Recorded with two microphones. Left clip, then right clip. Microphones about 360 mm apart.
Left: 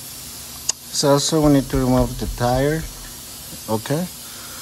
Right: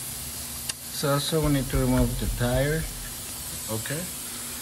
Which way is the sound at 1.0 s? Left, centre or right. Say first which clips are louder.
Left 9 dB; centre.